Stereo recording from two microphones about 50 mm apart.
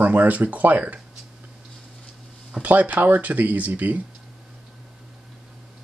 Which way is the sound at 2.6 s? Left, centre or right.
Right.